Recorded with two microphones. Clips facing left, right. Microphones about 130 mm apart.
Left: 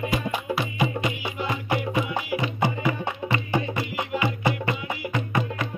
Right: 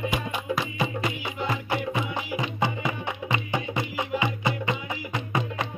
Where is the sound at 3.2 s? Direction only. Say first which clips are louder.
Left 3 dB; 15° right (ahead or behind).